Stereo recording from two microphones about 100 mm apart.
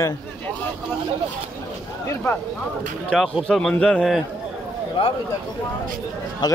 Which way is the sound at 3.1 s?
10° left (ahead or behind).